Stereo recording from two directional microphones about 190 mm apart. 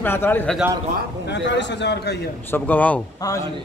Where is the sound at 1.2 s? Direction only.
65° left (ahead or behind).